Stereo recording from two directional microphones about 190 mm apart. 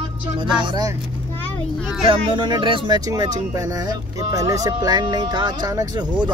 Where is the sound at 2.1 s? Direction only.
25° right (ahead or behind).